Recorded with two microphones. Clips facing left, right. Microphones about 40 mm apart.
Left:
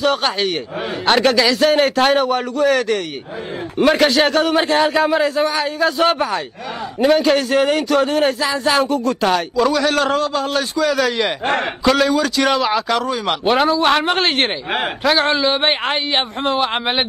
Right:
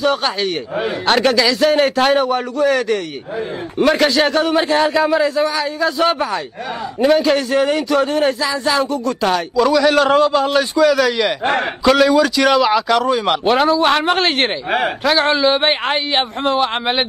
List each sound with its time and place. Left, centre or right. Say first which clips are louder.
0.0 s a man's voice: even; centre
9.8 s a man's voice: right 4 dB; centre
10.1 s a man's voice: right 5 dB; right
11.0 s a man's voice: right 2 dB; centre